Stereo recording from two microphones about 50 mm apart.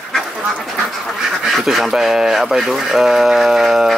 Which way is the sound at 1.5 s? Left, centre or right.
Centre.